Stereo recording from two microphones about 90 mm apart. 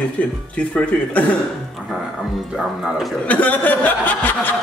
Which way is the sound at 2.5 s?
5° right (ahead or behind).